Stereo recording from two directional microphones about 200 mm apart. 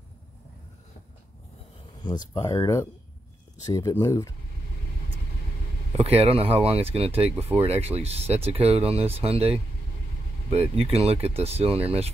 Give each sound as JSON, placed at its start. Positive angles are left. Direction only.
{"t": 2.0, "sound": "speech", "side_deg": 20}
{"t": 5.9, "sound": "speech", "side_deg": -30}